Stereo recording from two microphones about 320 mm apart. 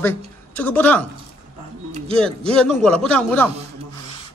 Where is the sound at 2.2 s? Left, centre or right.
Centre.